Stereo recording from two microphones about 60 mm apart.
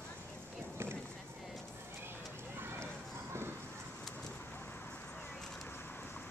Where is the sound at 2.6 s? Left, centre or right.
Right.